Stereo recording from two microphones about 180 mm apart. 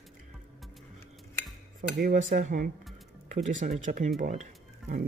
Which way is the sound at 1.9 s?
55° right (ahead or behind).